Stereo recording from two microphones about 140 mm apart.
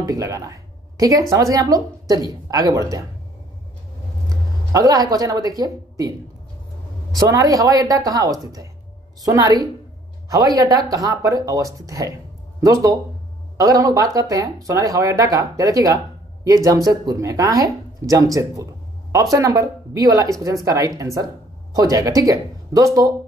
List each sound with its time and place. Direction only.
0.0 s a woman's voice: 25° right (ahead or behind)
4.3 s a woman's voice: 25° right (ahead or behind)